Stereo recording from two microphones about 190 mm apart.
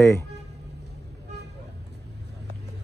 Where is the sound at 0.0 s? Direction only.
15° left (ahead or behind).